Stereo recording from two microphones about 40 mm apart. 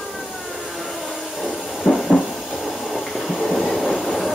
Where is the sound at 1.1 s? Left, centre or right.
Centre.